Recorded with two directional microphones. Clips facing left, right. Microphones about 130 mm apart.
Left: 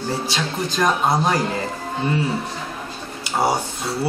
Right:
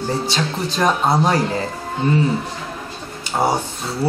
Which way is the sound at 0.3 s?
Centre (ahead or behind).